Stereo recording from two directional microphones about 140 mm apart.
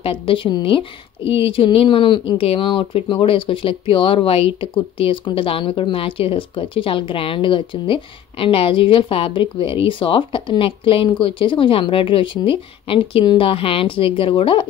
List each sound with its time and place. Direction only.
0.0 s a woman's voice: 40° left (ahead or behind)